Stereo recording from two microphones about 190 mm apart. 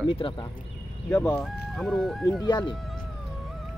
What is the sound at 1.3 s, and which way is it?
Speech, centre (ahead or behind).